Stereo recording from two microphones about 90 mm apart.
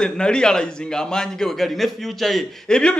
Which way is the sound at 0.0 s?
10° left (ahead or behind).